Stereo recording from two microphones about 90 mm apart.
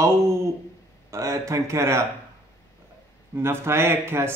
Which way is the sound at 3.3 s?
25° right (ahead or behind).